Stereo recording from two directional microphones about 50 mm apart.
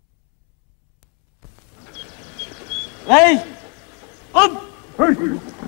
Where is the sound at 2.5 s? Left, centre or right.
Centre.